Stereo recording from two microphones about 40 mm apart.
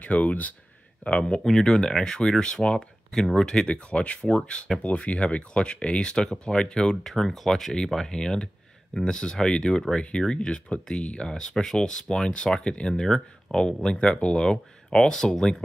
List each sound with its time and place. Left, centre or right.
0.0 s speech: left
1.0 s speech: left
1.4 s speech: centre
7.1 s speech: centre